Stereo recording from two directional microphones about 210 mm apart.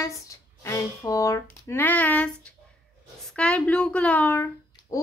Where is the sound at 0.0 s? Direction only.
15° left (ahead or behind).